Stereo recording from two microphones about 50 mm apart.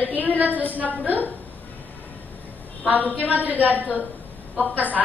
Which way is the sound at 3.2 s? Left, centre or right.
Right.